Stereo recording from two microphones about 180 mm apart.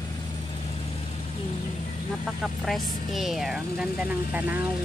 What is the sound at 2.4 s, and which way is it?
Speech, centre (ahead or behind).